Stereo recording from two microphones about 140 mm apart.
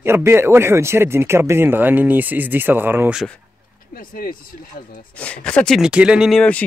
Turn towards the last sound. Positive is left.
turn(degrees=5)  # may be behind; listen again after turning